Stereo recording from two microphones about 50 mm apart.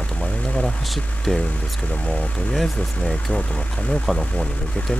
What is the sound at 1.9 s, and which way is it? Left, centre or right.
Speech, left.